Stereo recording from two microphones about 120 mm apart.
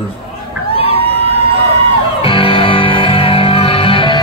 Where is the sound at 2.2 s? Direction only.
45° left (ahead or behind).